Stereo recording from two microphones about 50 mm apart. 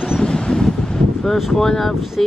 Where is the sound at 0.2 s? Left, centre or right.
Centre.